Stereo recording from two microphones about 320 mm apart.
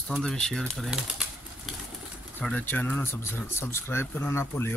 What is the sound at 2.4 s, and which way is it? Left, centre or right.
Speech, centre.